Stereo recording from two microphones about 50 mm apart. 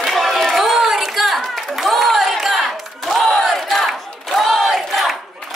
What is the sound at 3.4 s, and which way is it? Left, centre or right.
Battle cry, centre.